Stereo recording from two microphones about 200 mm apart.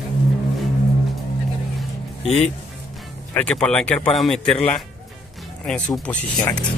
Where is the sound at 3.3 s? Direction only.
5° left (ahead or behind).